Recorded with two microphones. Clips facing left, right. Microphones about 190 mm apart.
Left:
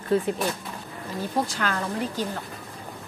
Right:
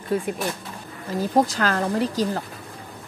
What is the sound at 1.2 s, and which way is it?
Speech, 40° right (ahead or behind).